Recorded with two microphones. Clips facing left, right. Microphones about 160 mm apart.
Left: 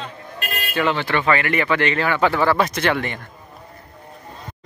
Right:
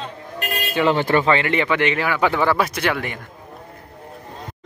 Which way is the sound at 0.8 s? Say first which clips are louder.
Right 5 dB; 40° right (ahead or behind).